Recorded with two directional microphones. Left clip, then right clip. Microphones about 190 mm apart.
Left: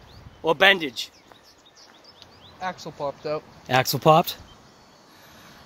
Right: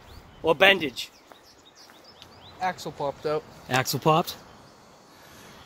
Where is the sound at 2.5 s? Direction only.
25° right (ahead or behind).